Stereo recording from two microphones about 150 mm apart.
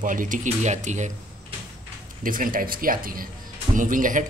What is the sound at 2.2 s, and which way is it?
Speech, 65° right (ahead or behind).